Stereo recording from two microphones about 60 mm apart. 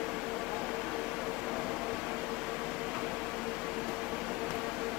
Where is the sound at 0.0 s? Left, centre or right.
Centre.